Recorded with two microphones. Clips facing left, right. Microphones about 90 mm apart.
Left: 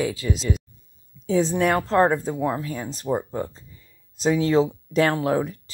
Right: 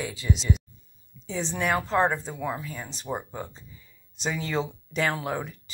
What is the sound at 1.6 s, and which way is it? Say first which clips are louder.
Speech: left 5 dB; 35° left (ahead or behind).